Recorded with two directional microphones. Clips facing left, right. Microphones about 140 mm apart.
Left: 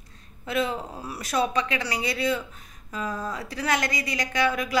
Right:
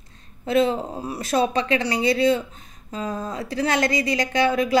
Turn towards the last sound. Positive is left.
turn(degrees=-30)  # may be behind; listen again after turning